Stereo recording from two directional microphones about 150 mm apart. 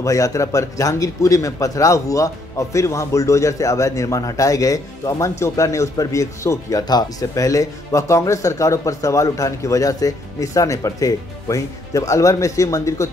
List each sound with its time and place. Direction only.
0.0 s speech: 20° left (ahead or behind)